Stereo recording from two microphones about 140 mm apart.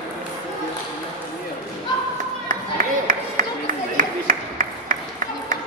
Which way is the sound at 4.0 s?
80° right.